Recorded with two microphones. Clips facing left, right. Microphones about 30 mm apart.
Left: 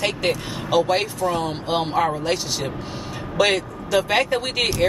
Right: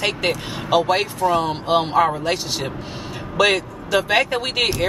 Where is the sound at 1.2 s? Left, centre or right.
Right.